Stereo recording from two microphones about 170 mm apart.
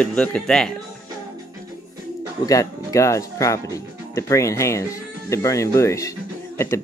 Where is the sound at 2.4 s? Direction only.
20° left (ahead or behind).